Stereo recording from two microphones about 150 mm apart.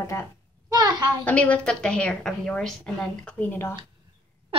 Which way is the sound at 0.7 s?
25° right (ahead or behind).